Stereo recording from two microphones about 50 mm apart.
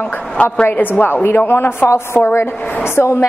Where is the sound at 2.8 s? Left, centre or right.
Left.